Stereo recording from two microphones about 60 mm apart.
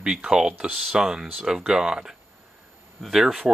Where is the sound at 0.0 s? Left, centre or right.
Centre.